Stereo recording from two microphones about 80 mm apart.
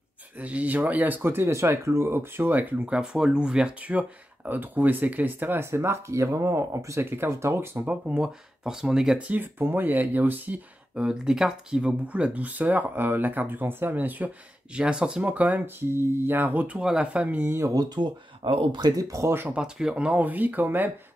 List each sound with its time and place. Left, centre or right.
0.4 s speech: centre
2.9 s speech: centre; by 7.7 s right
7.7 s speech: centre
9.3 s speech: right
17.7 s speech: right
18.9 s speech: right
19.2 s speech: right
19.5 s speech: centre